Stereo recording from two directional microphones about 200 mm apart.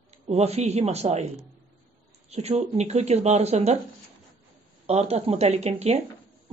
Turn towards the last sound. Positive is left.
turn(degrees=-30)  # may be behind; listen again after turning